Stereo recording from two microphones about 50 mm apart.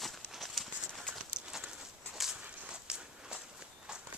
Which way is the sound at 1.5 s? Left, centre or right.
Centre.